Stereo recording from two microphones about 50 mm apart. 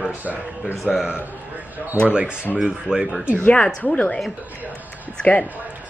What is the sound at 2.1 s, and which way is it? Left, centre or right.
Speech, centre.